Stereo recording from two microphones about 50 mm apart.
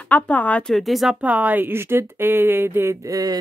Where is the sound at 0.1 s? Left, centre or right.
Left.